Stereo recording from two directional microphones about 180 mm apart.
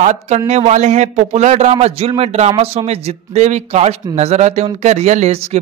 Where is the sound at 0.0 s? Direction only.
40° right (ahead or behind).